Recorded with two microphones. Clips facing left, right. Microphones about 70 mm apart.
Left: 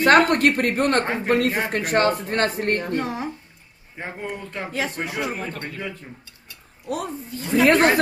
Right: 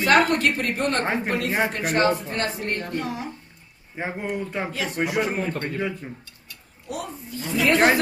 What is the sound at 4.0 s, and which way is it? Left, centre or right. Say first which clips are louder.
Speech: right 3 dB; centre.